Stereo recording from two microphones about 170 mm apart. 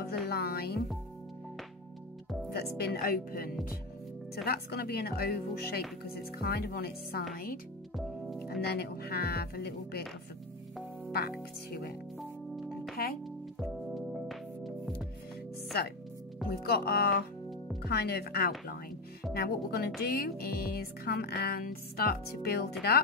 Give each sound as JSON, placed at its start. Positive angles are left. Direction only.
{"t": 0.0, "sound": "music", "side_deg": 65}
{"t": 2.5, "sound": "music", "side_deg": 70}
{"t": 8.0, "sound": "music", "side_deg": 0}
{"t": 8.5, "sound": "music", "side_deg": 70}
{"t": 12.2, "sound": "music", "side_deg": 0}
{"t": 16.4, "sound": "speech", "side_deg": 0}
{"t": 16.7, "sound": "music", "side_deg": 65}
{"t": 17.8, "sound": "speech", "side_deg": 65}
{"t": 19.3, "sound": "music", "side_deg": 65}